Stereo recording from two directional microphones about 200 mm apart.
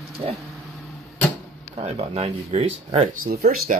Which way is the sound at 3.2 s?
45° right (ahead or behind).